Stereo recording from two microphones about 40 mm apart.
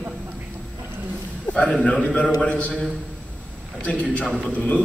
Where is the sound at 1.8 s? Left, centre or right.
Left.